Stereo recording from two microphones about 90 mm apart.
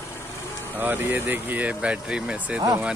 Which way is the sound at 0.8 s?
20° right (ahead or behind).